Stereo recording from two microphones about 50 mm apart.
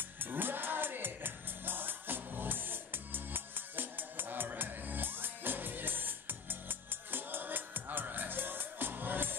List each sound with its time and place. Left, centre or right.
0.2 s music: right